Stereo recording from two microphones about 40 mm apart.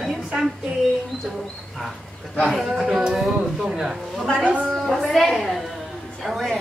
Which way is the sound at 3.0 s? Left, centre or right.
Centre.